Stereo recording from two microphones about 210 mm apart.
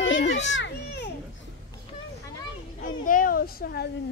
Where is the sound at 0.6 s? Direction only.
55° left (ahead or behind).